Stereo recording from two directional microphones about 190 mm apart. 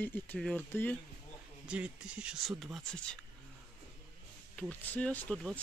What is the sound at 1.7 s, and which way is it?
Speech, 5° right (ahead or behind).